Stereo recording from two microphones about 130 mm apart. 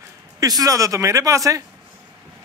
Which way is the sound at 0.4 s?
25° right (ahead or behind).